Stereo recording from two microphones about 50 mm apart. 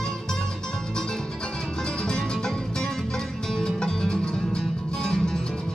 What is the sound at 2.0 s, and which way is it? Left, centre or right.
Music, centre.